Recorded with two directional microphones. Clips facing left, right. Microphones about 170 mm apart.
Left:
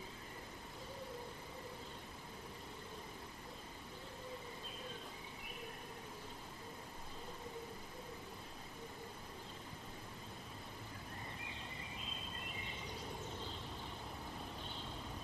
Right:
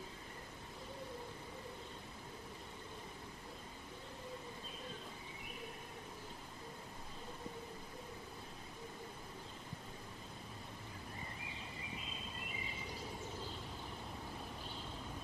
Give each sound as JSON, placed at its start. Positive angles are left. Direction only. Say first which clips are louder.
{"t": 11.4, "sound": "bird", "louder": "right 1 dB", "side_deg": 0}